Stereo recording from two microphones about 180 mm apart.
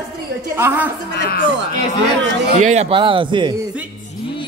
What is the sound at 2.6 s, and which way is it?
Speech, 40° right (ahead or behind).